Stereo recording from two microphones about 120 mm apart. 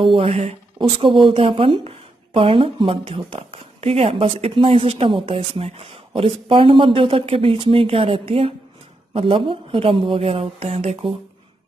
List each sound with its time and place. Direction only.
0.1 s speech: 55° right (ahead or behind)
0.7 s a woman's voice: 45° right (ahead or behind)